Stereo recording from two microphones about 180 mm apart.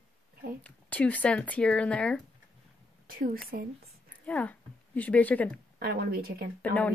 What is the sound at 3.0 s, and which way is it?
Speech, 50° right (ahead or behind).